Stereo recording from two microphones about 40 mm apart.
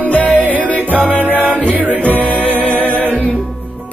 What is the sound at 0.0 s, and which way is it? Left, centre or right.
Music, left.